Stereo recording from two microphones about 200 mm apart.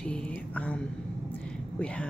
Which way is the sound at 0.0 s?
5° left (ahead or behind).